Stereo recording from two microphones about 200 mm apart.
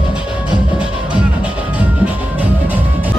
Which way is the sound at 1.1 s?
5° right (ahead or behind).